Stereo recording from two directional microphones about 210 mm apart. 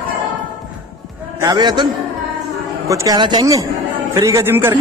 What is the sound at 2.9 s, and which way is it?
A man's voice, 15° right (ahead or behind).